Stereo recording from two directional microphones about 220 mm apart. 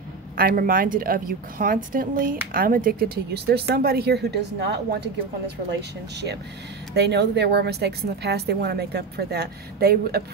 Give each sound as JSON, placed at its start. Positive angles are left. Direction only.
{"t": 0.4, "sound": "speech", "side_deg": -40}
{"t": 7.0, "sound": "a woman's voice", "side_deg": -50}